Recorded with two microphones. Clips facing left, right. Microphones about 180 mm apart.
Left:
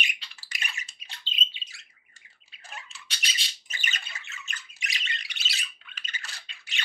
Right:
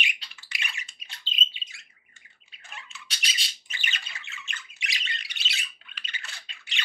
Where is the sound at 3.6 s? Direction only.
40° left (ahead or behind).